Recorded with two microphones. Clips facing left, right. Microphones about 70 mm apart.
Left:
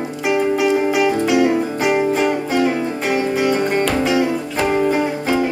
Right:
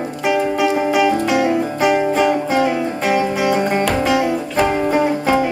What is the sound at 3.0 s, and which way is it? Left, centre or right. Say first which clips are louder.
Music: right 1 dB; centre.